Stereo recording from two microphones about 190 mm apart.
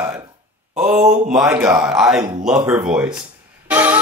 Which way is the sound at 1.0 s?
40° right (ahead or behind).